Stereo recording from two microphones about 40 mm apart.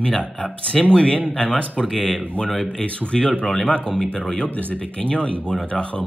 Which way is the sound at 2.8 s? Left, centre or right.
Left.